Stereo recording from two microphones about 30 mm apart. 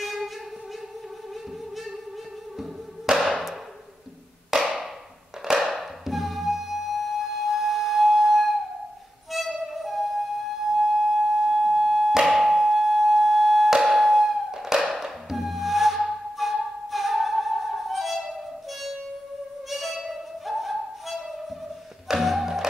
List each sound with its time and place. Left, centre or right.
0.0 s a sound: centre
3.2 s hammer: centre
4.5 s wood block: right
5.6 s music: centre
10.7 s wind instrument: centre
12.4 s a sound: centre
14.6 s music: centre
22.0 s music: centre